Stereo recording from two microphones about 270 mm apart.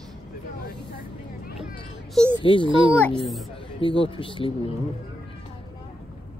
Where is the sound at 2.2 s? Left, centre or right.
Centre.